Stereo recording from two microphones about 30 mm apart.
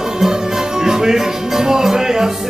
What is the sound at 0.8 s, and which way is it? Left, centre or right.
Music, centre.